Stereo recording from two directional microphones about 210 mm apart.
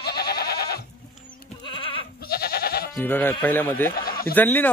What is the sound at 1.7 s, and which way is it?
Goat, 25° left (ahead or behind).